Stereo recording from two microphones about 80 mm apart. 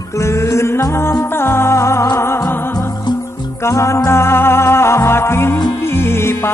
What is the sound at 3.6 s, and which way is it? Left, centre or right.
Music, left.